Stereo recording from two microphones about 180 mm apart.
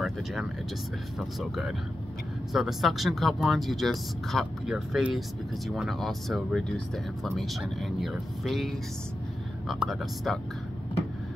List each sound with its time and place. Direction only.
0.0 s speech: centre (ahead or behind)